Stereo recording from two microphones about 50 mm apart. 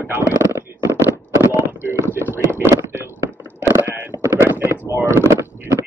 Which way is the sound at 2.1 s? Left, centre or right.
Right.